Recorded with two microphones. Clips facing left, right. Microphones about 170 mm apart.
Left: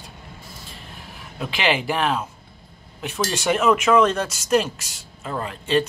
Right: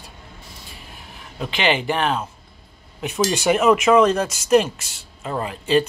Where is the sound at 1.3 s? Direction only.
Centre (ahead or behind).